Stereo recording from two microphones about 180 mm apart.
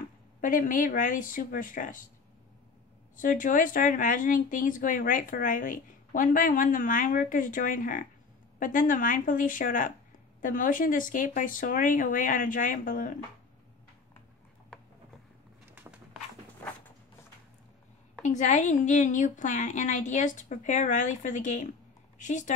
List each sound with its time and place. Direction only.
0.4 s speech: 50° left (ahead or behind)
3.2 s speech: 50° left (ahead or behind)
15.7 s a sound: 10° right (ahead or behind)
18.2 s speech: 40° left (ahead or behind)